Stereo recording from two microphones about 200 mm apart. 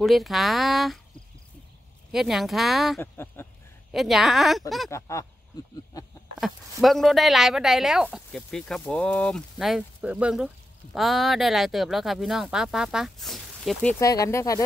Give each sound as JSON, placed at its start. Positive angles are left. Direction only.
{"t": 0.0, "sound": "speech", "side_deg": 0}
{"t": 2.1, "sound": "speech", "side_deg": 0}
{"t": 3.0, "sound": "speech", "side_deg": 10}
{"t": 3.9, "sound": "speech", "side_deg": 0}
{"t": 4.9, "sound": "speech", "side_deg": 15}
{"t": 5.9, "sound": "a sound", "side_deg": 20}
{"t": 6.4, "sound": "speech", "side_deg": 0}
{"t": 13.9, "sound": "speech", "side_deg": 15}